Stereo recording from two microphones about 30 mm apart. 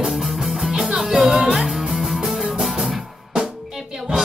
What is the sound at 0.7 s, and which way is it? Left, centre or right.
Music, centre.